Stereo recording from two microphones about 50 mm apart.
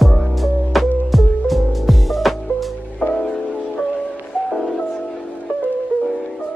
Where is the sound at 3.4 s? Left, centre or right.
Left.